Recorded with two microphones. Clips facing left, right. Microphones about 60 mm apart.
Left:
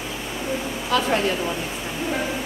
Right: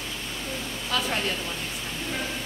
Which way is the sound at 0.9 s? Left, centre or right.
Centre.